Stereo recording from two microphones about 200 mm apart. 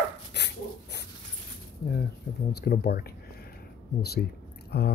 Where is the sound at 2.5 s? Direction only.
55° left (ahead or behind).